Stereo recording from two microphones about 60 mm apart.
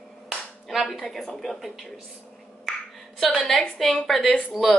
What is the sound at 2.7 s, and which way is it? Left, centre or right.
Finger snapping, centre.